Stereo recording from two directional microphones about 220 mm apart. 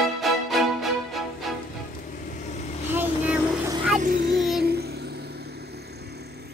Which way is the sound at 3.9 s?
40° right (ahead or behind).